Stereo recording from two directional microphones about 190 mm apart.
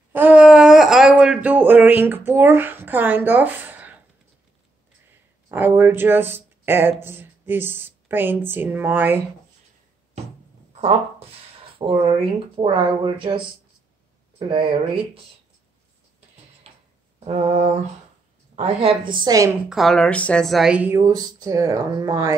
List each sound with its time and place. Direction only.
0.1 s wail: 10° right (ahead or behind)
5.5 s speech: 10° right (ahead or behind)
10.7 s speech: 35° right (ahead or behind)
16.6 s a sound: 30° right (ahead or behind)
18.6 s speech: 30° right (ahead or behind)
19.7 s speech: centre (ahead or behind); by 22.3 s 20° right (ahead or behind)